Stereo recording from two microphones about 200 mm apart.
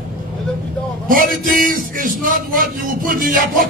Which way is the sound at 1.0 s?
45° right (ahead or behind).